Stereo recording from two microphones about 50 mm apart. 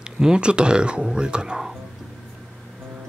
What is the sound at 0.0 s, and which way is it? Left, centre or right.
Speech, centre.